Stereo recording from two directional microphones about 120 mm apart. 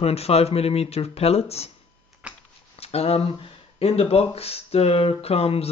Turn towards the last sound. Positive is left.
turn(degrees=55)  # may be behind; listen again after turning